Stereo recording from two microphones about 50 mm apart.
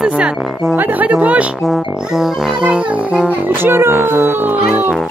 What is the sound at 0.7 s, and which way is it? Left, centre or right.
Music, right.